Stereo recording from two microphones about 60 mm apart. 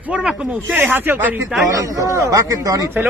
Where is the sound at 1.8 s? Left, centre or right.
Right.